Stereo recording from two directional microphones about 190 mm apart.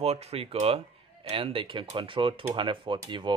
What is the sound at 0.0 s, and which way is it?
Speech, 30° right (ahead or behind).